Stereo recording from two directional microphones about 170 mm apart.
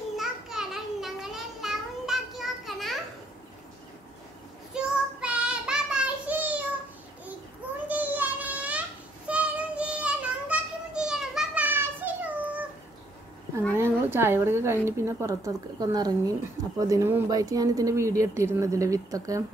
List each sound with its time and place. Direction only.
0.2 s a sound: centre (ahead or behind)
4.7 s child singing: 5° right (ahead or behind)
7.9 s child singing: 10° right (ahead or behind)
13.7 s a woman's voice: 15° right (ahead or behind)